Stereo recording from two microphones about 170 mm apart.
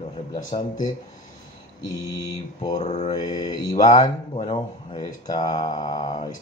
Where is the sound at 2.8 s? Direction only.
40° left (ahead or behind).